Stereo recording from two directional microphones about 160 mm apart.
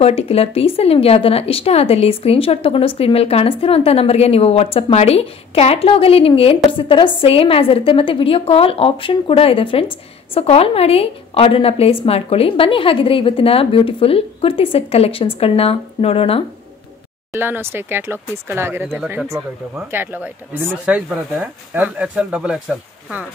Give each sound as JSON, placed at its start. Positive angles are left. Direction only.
{"t": 0.0, "sound": "speech", "side_deg": 40}
{"t": 17.3, "sound": "speech", "side_deg": -15}